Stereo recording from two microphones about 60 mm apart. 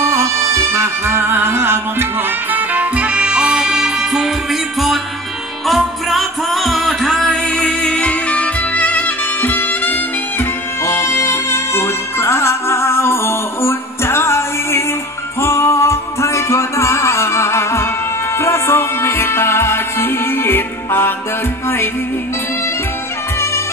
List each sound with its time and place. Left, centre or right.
0.0 s music: right; by 7.3 s centre
7.4 s music: centre
10.8 s music: left